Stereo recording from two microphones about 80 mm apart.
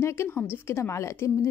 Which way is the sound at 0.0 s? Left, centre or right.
Left.